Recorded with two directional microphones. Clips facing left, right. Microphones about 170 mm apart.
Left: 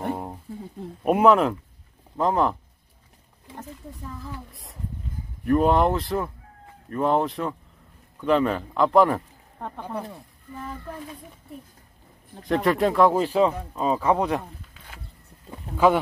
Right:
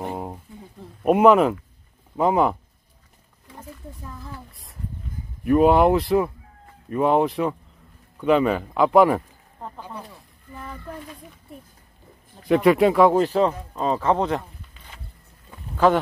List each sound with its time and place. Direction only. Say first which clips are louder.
0.0 s a sound: left 1 dB; 10° right (ahead or behind)
1.0 s speech: right 3 dB; 5° right (ahead or behind)
5.4 s speech: right 4 dB; 10° right (ahead or behind)
9.6 s speech: left 4 dB; 60° left (ahead or behind)
12.4 s speech: right 5 dB; 5° right (ahead or behind)
13.1 s speech: right 1 dB; 10° left (ahead or behind)